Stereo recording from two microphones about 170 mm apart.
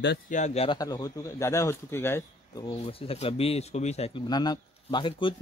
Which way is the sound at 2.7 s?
35° left (ahead or behind).